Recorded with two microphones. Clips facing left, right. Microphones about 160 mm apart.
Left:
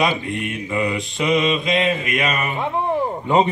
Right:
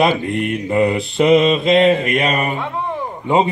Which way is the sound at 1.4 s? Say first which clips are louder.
Right 6 dB; 30° right (ahead or behind).